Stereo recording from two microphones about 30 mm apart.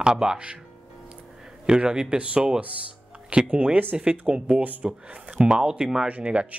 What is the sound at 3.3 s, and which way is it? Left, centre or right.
Speech, right.